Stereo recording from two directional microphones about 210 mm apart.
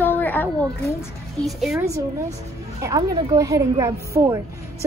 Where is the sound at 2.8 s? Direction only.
15° right (ahead or behind).